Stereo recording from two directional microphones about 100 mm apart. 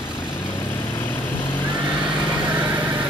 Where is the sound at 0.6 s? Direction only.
20° left (ahead or behind).